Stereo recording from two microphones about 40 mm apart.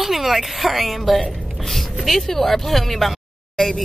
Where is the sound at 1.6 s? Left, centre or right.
Centre.